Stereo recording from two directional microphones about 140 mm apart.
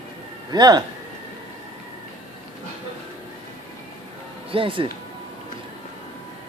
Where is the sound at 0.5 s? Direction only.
30° right (ahead or behind).